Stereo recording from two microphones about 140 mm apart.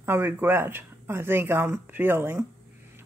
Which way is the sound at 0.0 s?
15° right (ahead or behind).